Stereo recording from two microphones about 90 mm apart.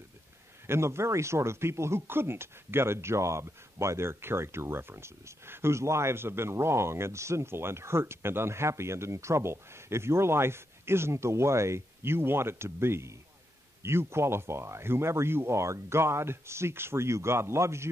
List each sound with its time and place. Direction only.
0.7 s speech: 30° right (ahead or behind)